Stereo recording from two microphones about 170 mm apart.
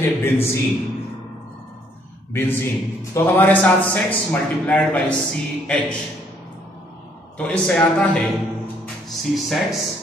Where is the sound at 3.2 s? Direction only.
10° left (ahead or behind).